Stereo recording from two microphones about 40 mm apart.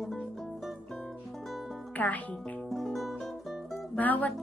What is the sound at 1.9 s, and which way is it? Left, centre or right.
Music, left.